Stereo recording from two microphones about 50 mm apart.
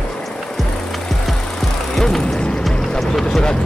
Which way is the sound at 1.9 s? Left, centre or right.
Centre.